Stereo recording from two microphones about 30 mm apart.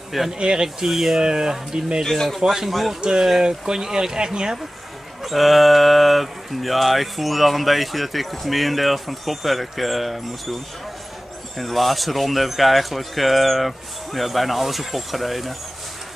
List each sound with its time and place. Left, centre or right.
0.4 s speech: right
0.7 s speech: centre
1.2 s speech: right
2.2 s speech: centre
3.0 s speech: right
5.2 s speech: centre